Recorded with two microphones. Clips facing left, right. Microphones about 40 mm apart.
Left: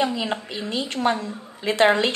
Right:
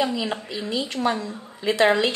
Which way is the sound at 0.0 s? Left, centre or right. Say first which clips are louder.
Left 1 dB; left.